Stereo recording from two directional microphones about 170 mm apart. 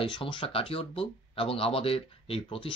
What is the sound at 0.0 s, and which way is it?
Speech, 30° left (ahead or behind).